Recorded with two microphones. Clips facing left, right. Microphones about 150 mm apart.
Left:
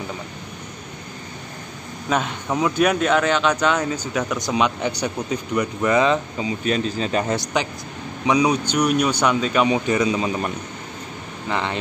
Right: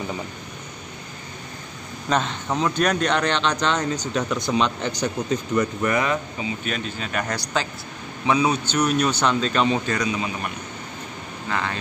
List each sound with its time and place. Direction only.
2.0 s speech: 10° left (ahead or behind)
6.6 s speech: 35° left (ahead or behind); by 9.9 s 10° left (ahead or behind)
9.9 s speech: 30° left (ahead or behind)